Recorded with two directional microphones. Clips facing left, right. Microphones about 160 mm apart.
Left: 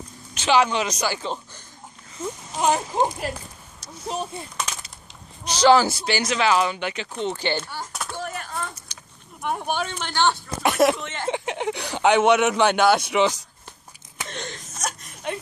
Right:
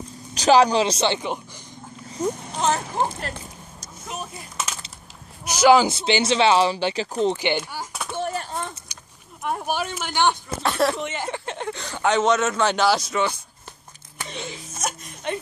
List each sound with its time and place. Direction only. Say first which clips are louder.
0.3 s speech: right 4 dB; 35° right (ahead or behind)
2.2 s speech: right 6 dB; 40° right (ahead or behind)
2.5 s speech: left 6 dB; 15° left (ahead or behind)
4.0 s speech: left 5 dB; 30° left (ahead or behind)
5.4 s speech: right 1 dB; 10° right (ahead or behind); by 7.2 s 30° right (ahead or behind)
7.3 s speech: right 2 dB; 15° right (ahead or behind)
8.1 s a sound: right 8 dB; 30° right (ahead or behind)
8.9 s vehicle: even; 10° right (ahead or behind)
9.4 s speech: even; 5° right (ahead or behind)
10.6 s speech: left 3 dB; 15° left (ahead or behind)
11.0 s speech: right 4 dB; 10° right (ahead or behind)
11.2 s speech: left 4 dB; 15° left (ahead or behind)
12.6 s speech: left 1 dB; 5° left (ahead or behind)
14.2 s a sound: right 1 dB; centre (ahead or behind)